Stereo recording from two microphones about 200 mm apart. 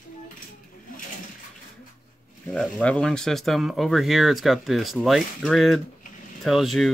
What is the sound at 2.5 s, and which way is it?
Speech, 5° left (ahead or behind).